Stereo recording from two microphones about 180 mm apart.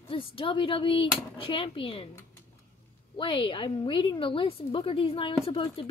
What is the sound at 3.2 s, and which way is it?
A woman's voice, 30° left (ahead or behind).